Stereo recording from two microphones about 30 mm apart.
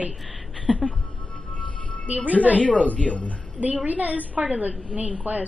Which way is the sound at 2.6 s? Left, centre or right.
Left.